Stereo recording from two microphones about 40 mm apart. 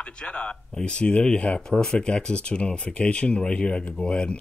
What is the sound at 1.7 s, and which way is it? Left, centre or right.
Speech, centre.